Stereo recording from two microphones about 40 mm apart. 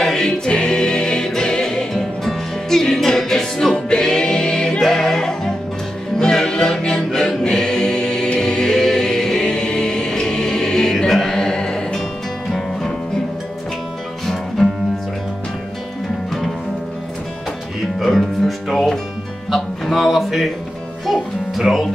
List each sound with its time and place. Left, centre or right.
0.0 s music: centre
8.4 s choir: centre
14.2 s music: centre
17.9 s music: centre